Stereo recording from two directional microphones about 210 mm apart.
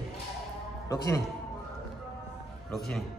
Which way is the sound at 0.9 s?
15° left (ahead or behind).